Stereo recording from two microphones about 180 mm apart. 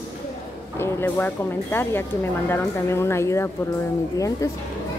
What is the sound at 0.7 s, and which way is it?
A woman's voice, 15° left (ahead or behind).